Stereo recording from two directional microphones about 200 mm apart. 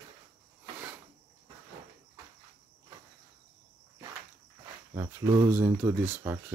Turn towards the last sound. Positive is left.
turn(degrees=-10)  # may be behind; listen again after turning